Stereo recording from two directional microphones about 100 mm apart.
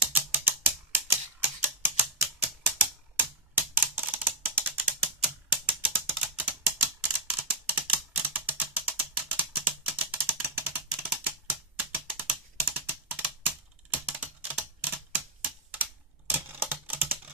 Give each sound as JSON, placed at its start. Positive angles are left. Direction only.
{"t": 0.1, "sound": "typing", "side_deg": -20}
{"t": 1.6, "sound": "typewriter", "side_deg": -20}
{"t": 4.6, "sound": "typing", "side_deg": -20}
{"t": 12.3, "sound": "computer keyboard", "side_deg": -15}
{"t": 13.9, "sound": "typing", "side_deg": -15}
{"t": 16.3, "sound": "computer keyboard", "side_deg": -20}